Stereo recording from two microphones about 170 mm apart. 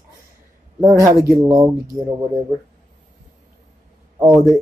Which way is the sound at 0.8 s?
20° right (ahead or behind).